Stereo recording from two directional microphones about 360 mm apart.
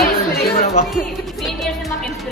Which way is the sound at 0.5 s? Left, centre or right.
Centre.